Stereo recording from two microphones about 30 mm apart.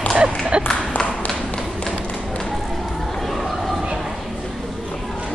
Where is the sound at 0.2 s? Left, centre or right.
Right.